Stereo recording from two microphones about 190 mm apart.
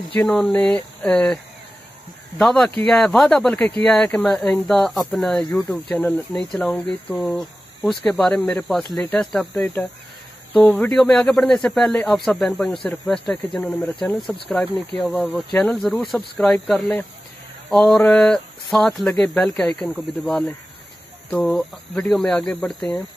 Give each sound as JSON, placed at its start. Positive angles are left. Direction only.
{"t": 0.1, "sound": "speech", "side_deg": 5}